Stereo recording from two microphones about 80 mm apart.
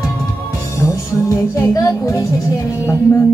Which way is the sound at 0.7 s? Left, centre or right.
Left.